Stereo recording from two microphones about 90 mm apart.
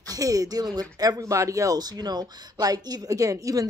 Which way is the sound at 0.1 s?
40° right (ahead or behind).